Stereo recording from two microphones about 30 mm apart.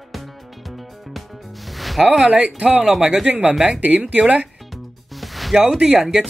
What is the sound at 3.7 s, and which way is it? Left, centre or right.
Speech, right.